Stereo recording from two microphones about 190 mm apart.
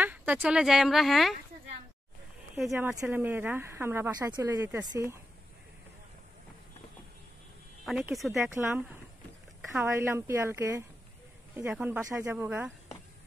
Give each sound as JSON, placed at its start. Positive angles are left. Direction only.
{"t": 0.0, "sound": "speech", "side_deg": -10}
{"t": 2.7, "sound": "speech", "side_deg": -15}
{"t": 8.1, "sound": "speech", "side_deg": 0}
{"t": 8.4, "sound": "speech", "side_deg": -15}